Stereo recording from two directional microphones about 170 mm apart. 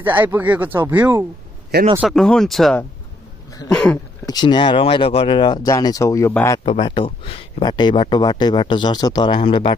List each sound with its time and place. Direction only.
0.0 s speech: 10° right (ahead or behind)
2.0 s speech: centre (ahead or behind)
4.3 s speech: 25° left (ahead or behind)
6.6 s speech: 30° left (ahead or behind)